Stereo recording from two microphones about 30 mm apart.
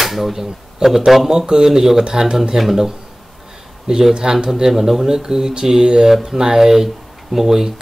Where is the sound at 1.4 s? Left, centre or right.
Right.